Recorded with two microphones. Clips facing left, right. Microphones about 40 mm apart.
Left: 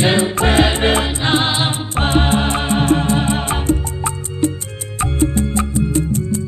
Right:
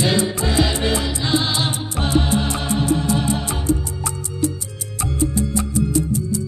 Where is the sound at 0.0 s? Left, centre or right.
Left.